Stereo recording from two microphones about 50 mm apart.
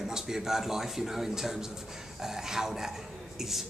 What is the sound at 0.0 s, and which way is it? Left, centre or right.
Speech, centre.